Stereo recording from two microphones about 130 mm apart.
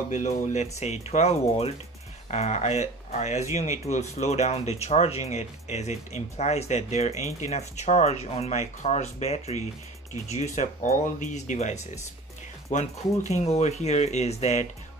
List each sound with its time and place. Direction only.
0.1 s speech: 65° left (ahead or behind)